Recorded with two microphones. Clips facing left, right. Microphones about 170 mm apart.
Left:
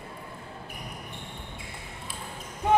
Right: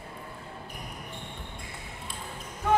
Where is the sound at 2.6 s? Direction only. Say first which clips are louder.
Left 3 dB; 20° left (ahead or behind).